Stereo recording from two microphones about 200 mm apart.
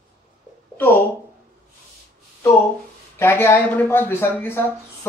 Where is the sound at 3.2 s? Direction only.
10° left (ahead or behind).